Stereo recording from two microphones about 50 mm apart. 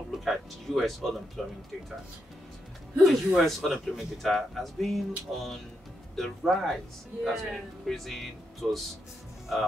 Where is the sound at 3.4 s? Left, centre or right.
Centre.